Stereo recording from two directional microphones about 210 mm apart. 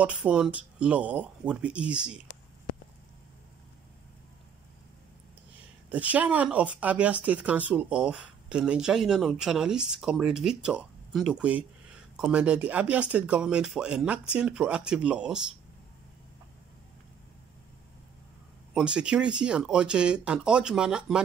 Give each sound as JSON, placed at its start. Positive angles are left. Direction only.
{"t": 0.0, "sound": "speech", "side_deg": -5}
{"t": 5.9, "sound": "speech", "side_deg": -5}
{"t": 18.7, "sound": "speech", "side_deg": -5}